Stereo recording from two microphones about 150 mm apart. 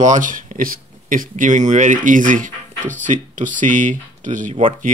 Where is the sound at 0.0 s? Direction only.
60° right (ahead or behind).